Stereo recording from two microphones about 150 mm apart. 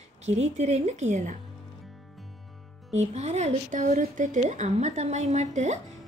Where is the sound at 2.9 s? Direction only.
50° right (ahead or behind).